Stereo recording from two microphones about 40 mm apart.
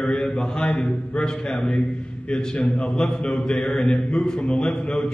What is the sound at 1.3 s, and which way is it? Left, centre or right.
Speech, centre.